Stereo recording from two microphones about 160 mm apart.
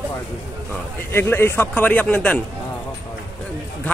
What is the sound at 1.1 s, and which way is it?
Speech, 15° left (ahead or behind).